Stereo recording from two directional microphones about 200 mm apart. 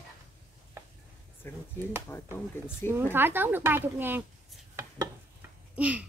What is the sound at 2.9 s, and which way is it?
Speech, 10° right (ahead or behind).